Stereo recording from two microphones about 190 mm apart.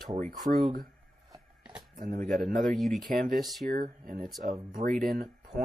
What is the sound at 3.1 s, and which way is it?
Speech, 50° right (ahead or behind).